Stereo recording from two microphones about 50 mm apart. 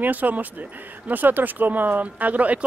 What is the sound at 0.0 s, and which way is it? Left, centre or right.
Speech, right.